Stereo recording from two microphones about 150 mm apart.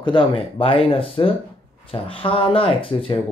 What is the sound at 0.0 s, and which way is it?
Speech, 35° left (ahead or behind).